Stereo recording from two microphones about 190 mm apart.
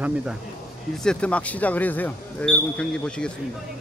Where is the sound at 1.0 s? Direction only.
5° left (ahead or behind).